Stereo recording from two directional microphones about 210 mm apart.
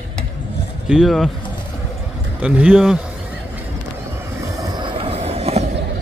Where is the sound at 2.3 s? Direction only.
5° right (ahead or behind).